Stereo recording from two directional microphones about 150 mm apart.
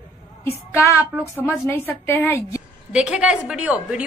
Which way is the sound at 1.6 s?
15° left (ahead or behind).